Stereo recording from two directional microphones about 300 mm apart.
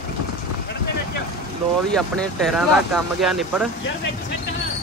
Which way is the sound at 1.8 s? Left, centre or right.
Centre.